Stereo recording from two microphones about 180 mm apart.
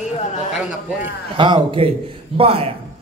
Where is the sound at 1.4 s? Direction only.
30° right (ahead or behind).